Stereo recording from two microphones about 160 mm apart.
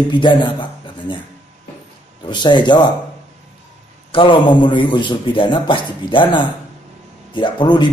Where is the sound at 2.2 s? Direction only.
30° left (ahead or behind).